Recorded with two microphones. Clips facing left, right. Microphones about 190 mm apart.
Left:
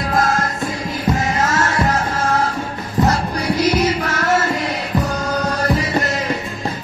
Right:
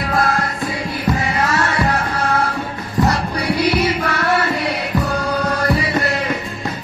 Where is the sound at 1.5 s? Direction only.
45° left (ahead or behind).